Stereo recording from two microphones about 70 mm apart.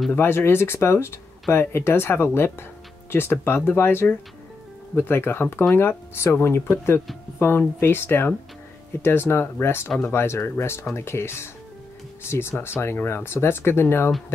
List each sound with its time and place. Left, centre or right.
0.1 s speech: left